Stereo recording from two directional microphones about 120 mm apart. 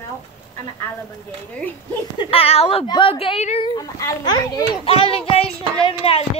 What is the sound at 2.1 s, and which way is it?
Speech, 55° left (ahead or behind).